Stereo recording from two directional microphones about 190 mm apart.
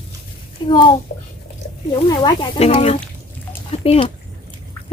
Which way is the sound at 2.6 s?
35° left (ahead or behind).